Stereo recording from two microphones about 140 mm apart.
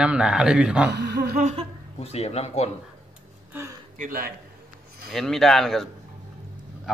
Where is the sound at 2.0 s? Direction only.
50° left (ahead or behind).